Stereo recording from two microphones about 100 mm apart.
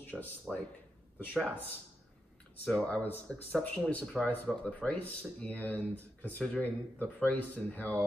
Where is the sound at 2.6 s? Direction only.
10° left (ahead or behind).